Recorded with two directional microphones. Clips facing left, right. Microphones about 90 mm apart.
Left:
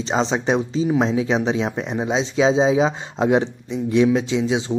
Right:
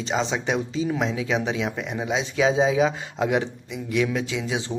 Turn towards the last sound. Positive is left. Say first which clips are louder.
# left 7 dB
turn(degrees=25)  # may be behind; listen again after turning